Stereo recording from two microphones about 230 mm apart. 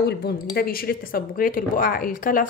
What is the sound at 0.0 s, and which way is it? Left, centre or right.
A woman's voice, left.